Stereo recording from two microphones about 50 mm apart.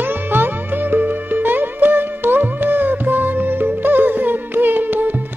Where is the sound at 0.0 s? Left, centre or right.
Right.